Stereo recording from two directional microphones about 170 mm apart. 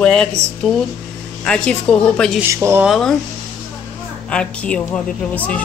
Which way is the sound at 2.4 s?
15° right (ahead or behind).